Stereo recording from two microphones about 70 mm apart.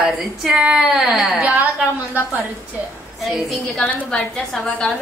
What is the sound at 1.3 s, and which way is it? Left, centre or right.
Speech, right.